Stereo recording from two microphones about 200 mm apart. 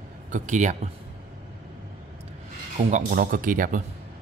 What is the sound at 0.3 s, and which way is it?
Speech, 35° right (ahead or behind).